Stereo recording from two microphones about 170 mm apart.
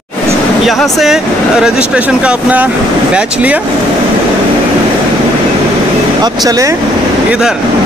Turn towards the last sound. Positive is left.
turn(degrees=-20)  # may be behind; listen again after turning